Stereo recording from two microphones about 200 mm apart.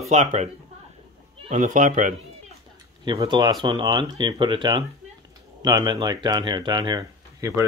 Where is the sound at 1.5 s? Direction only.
40° right (ahead or behind).